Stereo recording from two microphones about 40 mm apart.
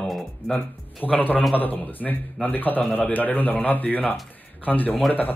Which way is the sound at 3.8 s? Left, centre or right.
Left.